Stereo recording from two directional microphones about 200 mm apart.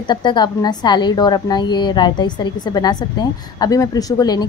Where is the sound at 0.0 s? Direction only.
20° left (ahead or behind).